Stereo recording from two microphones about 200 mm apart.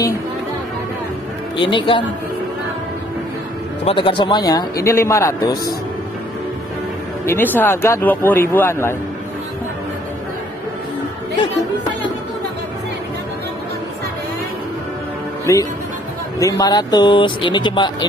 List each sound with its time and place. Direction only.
1.6 s speech: 25° left (ahead or behind)
3.8 s speech: 25° left (ahead or behind)
7.2 s speech: 10° left (ahead or behind)
15.5 s speech: 15° left (ahead or behind)